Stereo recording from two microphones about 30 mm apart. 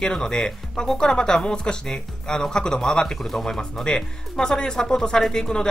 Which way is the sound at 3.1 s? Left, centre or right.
Centre.